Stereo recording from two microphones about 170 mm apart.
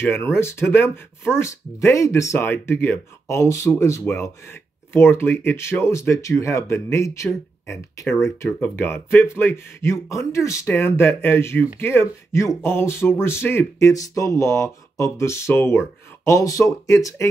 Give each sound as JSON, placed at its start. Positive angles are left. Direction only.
{"t": 0.0, "sound": "speech", "side_deg": 15}